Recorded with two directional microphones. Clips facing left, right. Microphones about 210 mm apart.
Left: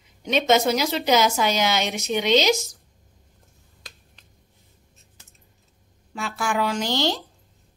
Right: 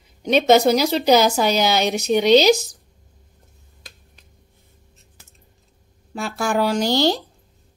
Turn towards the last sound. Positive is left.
turn(degrees=-35)  # may be behind; listen again after turning